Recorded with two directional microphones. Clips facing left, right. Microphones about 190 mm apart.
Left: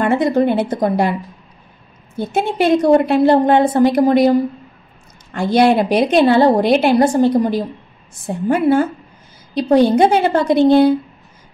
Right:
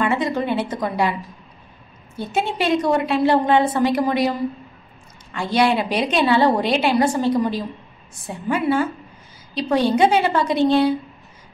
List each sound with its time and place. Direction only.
0.0 s a woman's voice: 50° left (ahead or behind)
2.1 s a woman's voice: 55° left (ahead or behind)
5.3 s a woman's voice: 50° left (ahead or behind)